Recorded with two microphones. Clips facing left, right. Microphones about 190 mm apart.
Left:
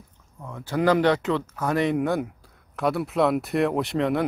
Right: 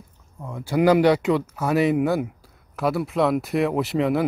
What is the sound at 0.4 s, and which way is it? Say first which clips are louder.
Speech: right 4 dB; 10° right (ahead or behind).